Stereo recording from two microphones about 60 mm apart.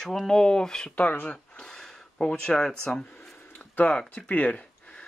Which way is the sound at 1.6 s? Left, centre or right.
Centre.